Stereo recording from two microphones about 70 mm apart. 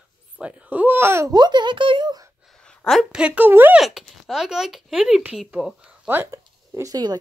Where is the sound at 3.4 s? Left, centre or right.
Right.